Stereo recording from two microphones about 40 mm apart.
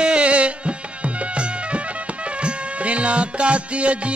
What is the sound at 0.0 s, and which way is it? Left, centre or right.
Music, right.